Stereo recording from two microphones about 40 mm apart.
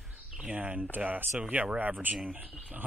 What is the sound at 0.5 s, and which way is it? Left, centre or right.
A man's voice, right.